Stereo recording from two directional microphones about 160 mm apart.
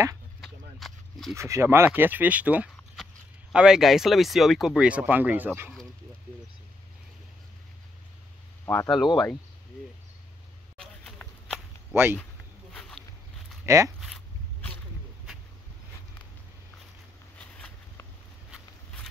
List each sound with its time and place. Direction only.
0.4 s a sound: centre (ahead or behind)
1.3 s speech: 15° right (ahead or behind)
8.9 s speech: centre (ahead or behind)
10.8 s walk: 5° left (ahead or behind)
11.9 s speech: 15° right (ahead or behind)
12.7 s a sound: 5° left (ahead or behind)
13.7 s speech: 20° right (ahead or behind)
13.9 s dog: centre (ahead or behind)
17.4 s a sound: 5° left (ahead or behind)